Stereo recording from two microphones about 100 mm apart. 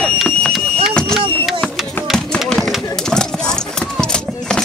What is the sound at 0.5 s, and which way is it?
Vehicle, 5° left (ahead or behind).